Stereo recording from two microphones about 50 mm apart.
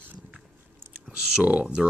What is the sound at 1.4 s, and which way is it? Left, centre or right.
Speech, right.